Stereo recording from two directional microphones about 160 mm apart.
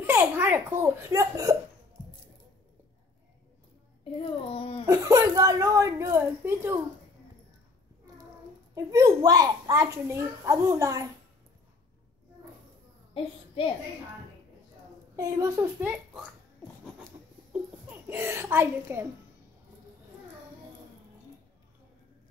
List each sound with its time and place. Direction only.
0.0 s a child's voice: 15° right (ahead or behind)
4.5 s speech: 35° left (ahead or behind)
4.8 s a child's voice: 20° right (ahead or behind)
8.7 s a child's voice: 20° right (ahead or behind)
13.2 s speech: 35° left (ahead or behind)
15.1 s a child's voice: 20° right (ahead or behind)
17.5 s a sound: 10° right (ahead or behind)